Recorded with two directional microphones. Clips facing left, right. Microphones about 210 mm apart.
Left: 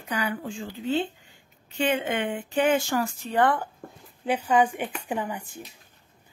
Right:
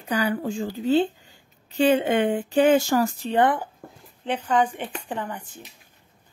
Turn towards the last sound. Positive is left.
turn(degrees=10)  # may be behind; listen again after turning